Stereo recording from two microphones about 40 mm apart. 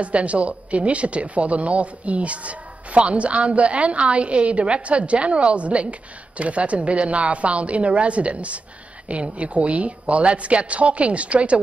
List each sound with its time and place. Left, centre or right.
0.0 s speech: right